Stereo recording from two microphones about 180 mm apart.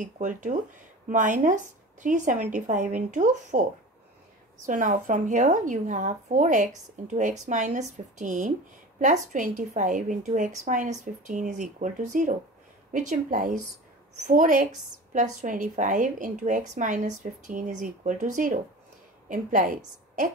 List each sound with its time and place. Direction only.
0.0 s a woman's voice: 45° right (ahead or behind)